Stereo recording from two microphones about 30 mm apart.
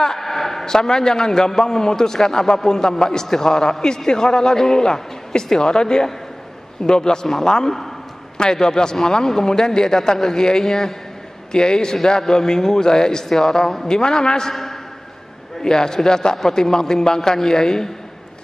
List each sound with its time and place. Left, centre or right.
0.0 s a man's voice: centre
14.5 s a sound: centre
15.6 s a man's voice: left